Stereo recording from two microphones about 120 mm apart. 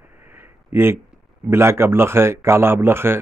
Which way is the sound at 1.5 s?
20° right (ahead or behind).